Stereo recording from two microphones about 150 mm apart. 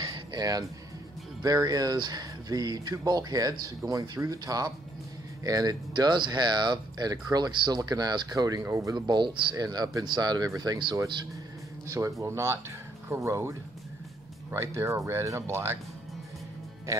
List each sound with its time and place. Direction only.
0.0 s music: 30° right (ahead or behind)
1.4 s speech: 25° right (ahead or behind)
11.9 s speech: 20° right (ahead or behind)